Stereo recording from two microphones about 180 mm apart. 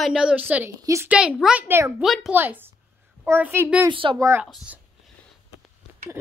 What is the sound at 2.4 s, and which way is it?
A woman's voice, 10° right (ahead or behind).